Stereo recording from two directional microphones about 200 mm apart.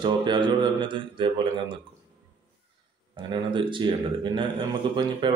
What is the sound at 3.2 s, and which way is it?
A man's voice, 25° right (ahead or behind).